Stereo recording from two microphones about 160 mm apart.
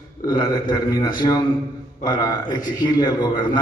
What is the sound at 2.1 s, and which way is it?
A man's voice, 25° left (ahead or behind).